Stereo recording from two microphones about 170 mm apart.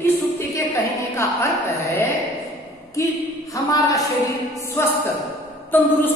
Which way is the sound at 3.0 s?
20° left (ahead or behind).